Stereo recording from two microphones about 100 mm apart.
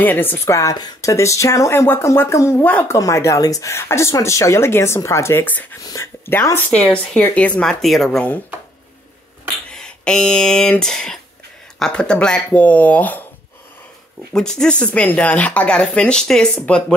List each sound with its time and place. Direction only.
0.0 s speech: 20° left (ahead or behind)
0.6 s speech: 40° left (ahead or behind); by 2.8 s 20° left (ahead or behind)
2.9 s speech: 30° left (ahead or behind); by 7.7 s 10° left (ahead or behind)
7.8 s speech: centre (ahead or behind)
9.7 s speech: 10° left (ahead or behind)
14.3 s speech: 5° left (ahead or behind)